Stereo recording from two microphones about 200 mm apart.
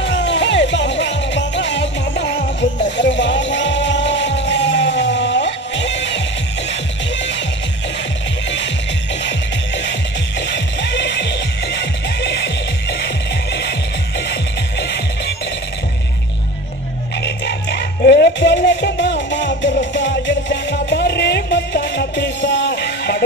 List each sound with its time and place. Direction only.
0.0 s music: 60° left (ahead or behind)
10.5 s music: 60° left (ahead or behind)
17.2 s music: 55° left (ahead or behind)